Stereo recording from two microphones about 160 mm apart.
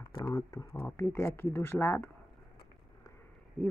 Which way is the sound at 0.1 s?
25° left (ahead or behind).